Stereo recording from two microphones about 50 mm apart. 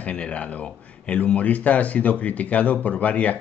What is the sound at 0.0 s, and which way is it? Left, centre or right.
Speech, left.